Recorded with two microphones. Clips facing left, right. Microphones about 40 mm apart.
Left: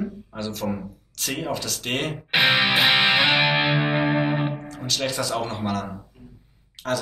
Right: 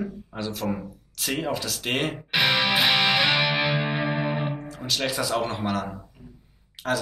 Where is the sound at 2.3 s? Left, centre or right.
Centre.